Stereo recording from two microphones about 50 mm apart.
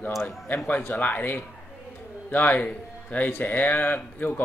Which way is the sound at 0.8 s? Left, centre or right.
Left.